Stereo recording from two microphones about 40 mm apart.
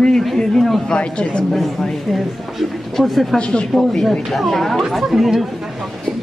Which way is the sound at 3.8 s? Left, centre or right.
Centre.